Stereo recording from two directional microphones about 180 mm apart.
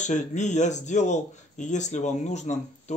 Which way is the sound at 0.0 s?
40° left (ahead or behind).